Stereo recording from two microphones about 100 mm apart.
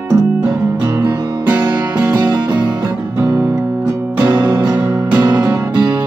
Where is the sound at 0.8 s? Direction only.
20° right (ahead or behind).